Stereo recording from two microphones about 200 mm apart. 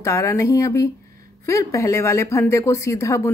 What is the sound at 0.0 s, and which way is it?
A woman's voice, 15° left (ahead or behind).